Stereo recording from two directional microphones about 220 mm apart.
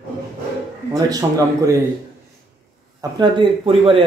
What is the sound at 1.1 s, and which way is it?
Speech, 15° right (ahead or behind).